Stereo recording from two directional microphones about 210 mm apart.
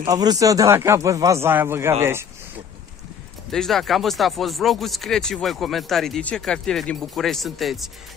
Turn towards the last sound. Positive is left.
turn(degrees=0)  # may be behind; listen again after turning